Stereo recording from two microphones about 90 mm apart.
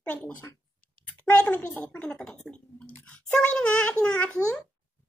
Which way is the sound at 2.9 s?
20° left (ahead or behind).